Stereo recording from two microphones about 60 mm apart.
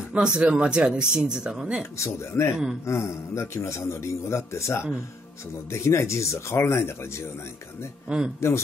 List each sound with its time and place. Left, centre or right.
0.1 s speech: centre
2.0 s a man's voice: left
2.5 s speech: centre
2.9 s a man's voice: left
8.4 s a man's voice: left